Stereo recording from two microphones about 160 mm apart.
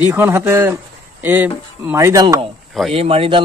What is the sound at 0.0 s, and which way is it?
Speech, 15° right (ahead or behind).